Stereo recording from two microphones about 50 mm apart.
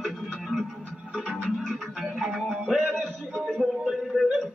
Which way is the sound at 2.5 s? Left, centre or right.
Centre.